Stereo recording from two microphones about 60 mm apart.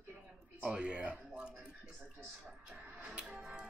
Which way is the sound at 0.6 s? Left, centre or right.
Centre.